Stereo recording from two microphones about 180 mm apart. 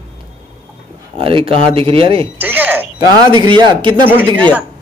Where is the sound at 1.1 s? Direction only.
30° right (ahead or behind).